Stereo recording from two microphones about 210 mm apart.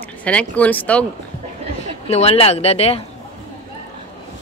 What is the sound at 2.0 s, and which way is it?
Speech, 30° left (ahead or behind).